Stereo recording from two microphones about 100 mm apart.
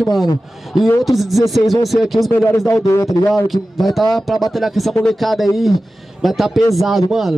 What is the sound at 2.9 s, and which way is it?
Speech, 30° left (ahead or behind).